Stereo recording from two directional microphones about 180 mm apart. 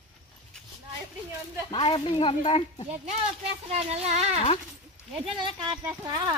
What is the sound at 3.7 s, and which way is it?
Child singing, 35° right (ahead or behind).